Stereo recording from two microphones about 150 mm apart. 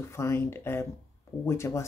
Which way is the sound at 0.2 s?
15° left (ahead or behind).